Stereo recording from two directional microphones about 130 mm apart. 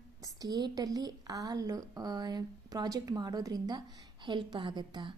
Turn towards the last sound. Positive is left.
turn(degrees=-35)  # may be behind; listen again after turning